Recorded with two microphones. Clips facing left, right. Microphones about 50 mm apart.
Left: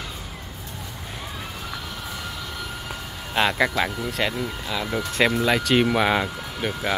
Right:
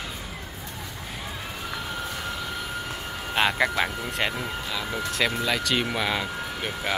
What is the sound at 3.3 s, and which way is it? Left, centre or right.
Speech, centre.